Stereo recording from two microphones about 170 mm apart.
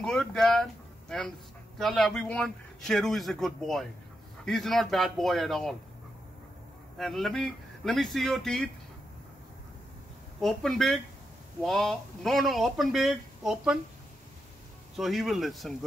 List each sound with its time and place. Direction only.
0.0 s speech: 5° left (ahead or behind)
7.0 s speech: centre (ahead or behind)
10.4 s speech: centre (ahead or behind)
15.0 s speech: centre (ahead or behind)